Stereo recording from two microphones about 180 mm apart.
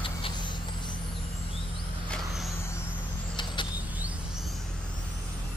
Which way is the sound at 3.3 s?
25° left (ahead or behind).